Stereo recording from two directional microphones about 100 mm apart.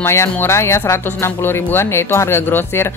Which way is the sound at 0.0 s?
25° left (ahead or behind).